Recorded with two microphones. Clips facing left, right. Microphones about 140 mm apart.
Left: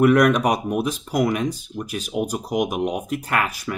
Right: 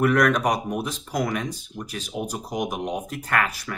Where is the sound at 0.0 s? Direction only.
15° left (ahead or behind).